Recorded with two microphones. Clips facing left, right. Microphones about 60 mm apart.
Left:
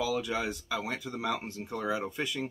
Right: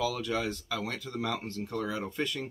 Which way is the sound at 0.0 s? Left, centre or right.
Centre.